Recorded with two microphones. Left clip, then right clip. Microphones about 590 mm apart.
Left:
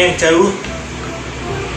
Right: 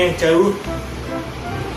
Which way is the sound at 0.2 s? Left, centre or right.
Right.